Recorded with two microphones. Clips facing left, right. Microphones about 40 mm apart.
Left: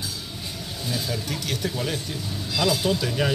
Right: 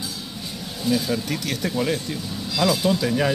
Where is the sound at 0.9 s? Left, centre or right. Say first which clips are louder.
Right 7 dB; right.